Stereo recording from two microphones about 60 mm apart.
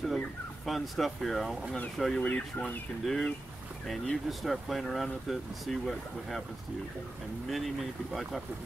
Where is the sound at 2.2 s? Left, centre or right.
Left.